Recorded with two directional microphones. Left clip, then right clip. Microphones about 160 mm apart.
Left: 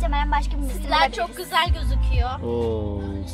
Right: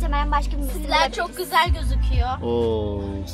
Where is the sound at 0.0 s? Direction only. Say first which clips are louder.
Even; 25° left (ahead or behind).